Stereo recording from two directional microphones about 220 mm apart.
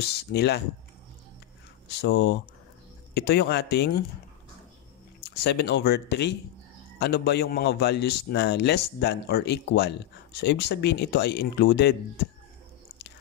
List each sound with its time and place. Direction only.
0.1 s a man's voice: 50° left (ahead or behind)
1.9 s a man's voice: 50° left (ahead or behind)
5.2 s a man's voice: 50° left (ahead or behind)